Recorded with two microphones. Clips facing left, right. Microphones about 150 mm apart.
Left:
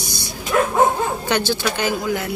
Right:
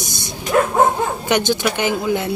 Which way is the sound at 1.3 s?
20° right (ahead or behind).